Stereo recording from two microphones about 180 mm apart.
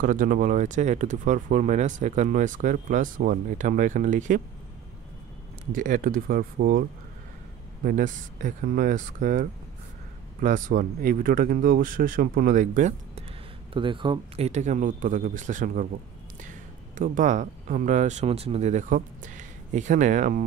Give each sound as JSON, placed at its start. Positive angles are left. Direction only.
{"t": 0.0, "sound": "speech", "side_deg": -50}
{"t": 5.7, "sound": "speech", "side_deg": -45}
{"t": 13.7, "sound": "speech", "side_deg": -30}